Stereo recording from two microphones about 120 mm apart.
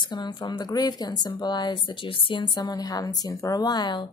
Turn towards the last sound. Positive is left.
turn(degrees=35)  # may be behind; listen again after turning